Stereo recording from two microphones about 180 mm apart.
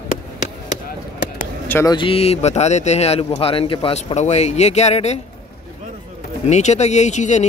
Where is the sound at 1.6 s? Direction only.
15° left (ahead or behind).